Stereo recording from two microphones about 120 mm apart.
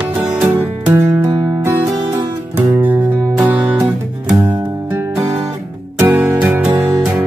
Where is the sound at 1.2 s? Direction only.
35° right (ahead or behind).